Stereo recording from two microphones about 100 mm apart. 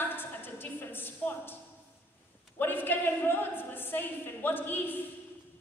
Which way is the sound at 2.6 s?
20° left (ahead or behind).